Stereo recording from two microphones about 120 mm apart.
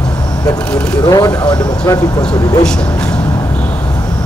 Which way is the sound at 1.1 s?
30° left (ahead or behind).